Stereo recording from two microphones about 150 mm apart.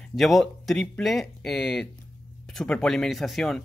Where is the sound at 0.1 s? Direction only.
Centre (ahead or behind).